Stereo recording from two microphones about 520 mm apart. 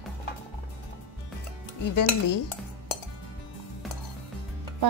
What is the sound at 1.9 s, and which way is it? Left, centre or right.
Speech, left.